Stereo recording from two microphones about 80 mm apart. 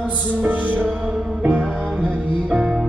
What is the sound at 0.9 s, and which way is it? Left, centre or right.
Music, centre.